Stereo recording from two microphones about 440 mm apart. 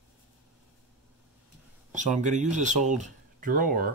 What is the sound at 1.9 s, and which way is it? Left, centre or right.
Speech, centre.